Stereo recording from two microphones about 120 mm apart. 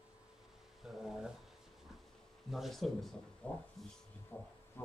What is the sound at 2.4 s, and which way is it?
Speech, centre (ahead or behind).